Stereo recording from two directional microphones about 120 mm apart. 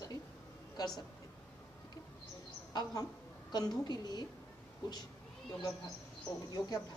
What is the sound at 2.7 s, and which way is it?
A woman's voice, 35° left (ahead or behind).